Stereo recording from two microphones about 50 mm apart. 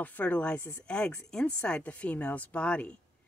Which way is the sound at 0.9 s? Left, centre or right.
Left.